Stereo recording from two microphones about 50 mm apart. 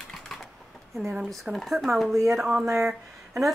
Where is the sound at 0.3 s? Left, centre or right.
Centre.